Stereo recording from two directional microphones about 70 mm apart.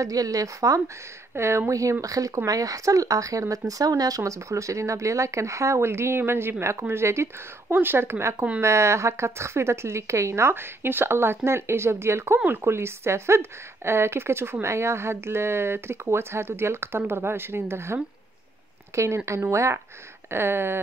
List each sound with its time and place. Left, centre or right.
0.0 s speech: right
1.3 s speech: right
1.7 s speech: right